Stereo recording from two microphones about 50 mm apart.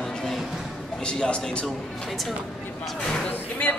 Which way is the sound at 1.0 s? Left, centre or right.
Centre.